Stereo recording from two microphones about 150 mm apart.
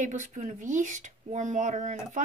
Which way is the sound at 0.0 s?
55° right (ahead or behind).